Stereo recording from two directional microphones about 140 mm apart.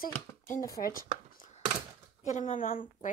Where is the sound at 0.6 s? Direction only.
25° left (ahead or behind).